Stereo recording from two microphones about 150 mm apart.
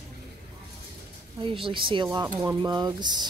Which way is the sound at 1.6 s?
35° right (ahead or behind).